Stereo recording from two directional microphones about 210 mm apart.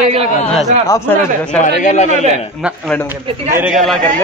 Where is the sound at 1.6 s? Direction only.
35° left (ahead or behind).